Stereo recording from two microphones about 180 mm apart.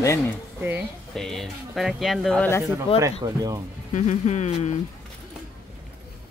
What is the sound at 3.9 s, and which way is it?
Speech, 40° left (ahead or behind).